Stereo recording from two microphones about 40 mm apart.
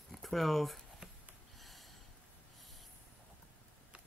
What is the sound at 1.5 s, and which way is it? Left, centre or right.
Snort, centre.